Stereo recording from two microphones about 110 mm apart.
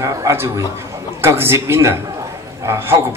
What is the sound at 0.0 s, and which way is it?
A man's voice, 25° right (ahead or behind).